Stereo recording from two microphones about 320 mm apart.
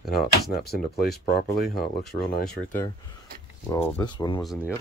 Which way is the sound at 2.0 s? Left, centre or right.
Centre.